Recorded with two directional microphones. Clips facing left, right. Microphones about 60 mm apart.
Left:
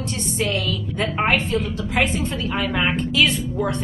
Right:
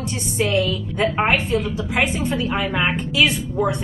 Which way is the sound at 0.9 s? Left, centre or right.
Centre.